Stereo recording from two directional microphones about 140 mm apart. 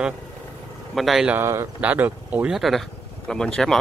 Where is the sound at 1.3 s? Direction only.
20° right (ahead or behind).